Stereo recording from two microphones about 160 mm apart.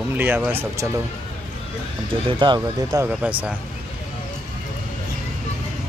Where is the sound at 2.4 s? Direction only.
25° right (ahead or behind).